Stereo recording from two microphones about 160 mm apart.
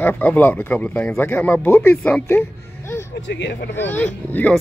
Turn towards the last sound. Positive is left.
turn(degrees=10)  # may be behind; listen again after turning